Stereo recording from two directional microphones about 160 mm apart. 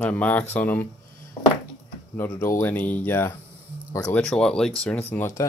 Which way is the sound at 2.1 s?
15° left (ahead or behind).